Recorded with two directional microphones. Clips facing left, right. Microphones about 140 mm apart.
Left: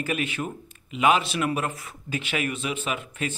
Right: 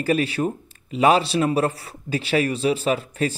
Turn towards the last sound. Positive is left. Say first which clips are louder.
# right 8 dB
turn(degrees=-35)  # may be behind; listen again after turning